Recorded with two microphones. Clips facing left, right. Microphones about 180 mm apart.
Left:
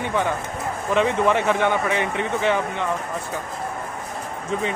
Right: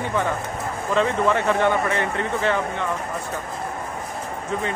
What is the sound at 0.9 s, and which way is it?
Speech, 15° left (ahead or behind).